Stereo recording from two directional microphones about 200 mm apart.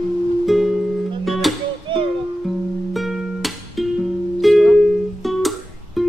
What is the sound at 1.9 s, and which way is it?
Music, 25° right (ahead or behind).